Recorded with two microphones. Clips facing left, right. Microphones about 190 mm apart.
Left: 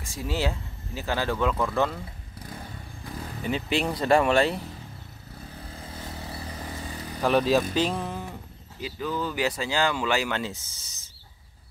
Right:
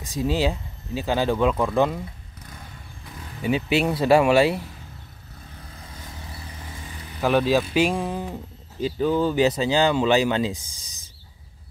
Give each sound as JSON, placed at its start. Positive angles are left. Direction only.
{"t": 0.0, "sound": "speech", "side_deg": -20}
{"t": 3.4, "sound": "speech", "side_deg": -10}
{"t": 5.9, "sound": "vehicle", "side_deg": 35}
{"t": 7.2, "sound": "speech", "side_deg": 0}
{"t": 8.8, "sound": "speech", "side_deg": -30}